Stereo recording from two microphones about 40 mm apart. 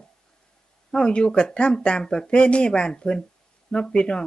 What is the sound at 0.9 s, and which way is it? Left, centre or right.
Speech, left.